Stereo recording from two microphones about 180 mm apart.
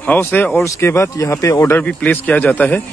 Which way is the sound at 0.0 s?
10° left (ahead or behind).